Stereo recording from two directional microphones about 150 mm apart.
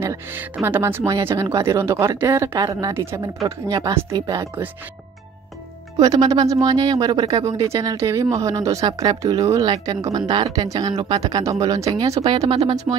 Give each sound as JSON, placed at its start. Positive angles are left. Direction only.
{"t": 0.0, "sound": "speech", "side_deg": -20}
{"t": 5.9, "sound": "speech", "side_deg": -25}
{"t": 12.2, "sound": "speech", "side_deg": -35}
{"t": 12.9, "sound": "speech", "side_deg": -15}